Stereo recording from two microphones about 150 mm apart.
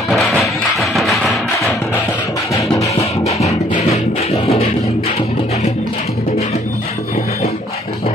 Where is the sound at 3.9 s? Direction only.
45° left (ahead or behind).